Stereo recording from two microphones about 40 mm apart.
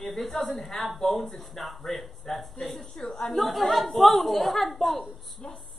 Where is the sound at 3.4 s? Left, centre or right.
Centre.